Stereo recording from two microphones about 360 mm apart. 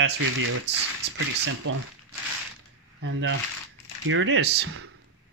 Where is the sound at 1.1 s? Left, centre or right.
Right.